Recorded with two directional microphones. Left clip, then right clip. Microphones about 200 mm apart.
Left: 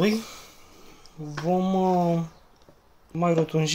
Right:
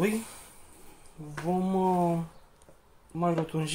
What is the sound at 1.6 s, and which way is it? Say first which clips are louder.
Speech: left 2 dB; 50° left (ahead or behind).